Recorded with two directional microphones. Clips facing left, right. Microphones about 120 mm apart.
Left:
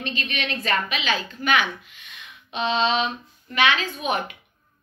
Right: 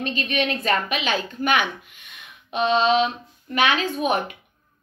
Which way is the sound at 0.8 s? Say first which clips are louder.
Right 2 dB; 50° right (ahead or behind).